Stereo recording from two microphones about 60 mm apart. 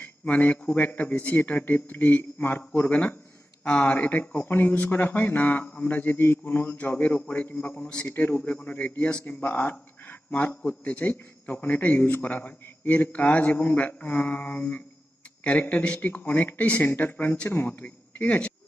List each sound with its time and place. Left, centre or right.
0.0 s a sound: left
0.7 s speech: left
15.8 s a man's voice: left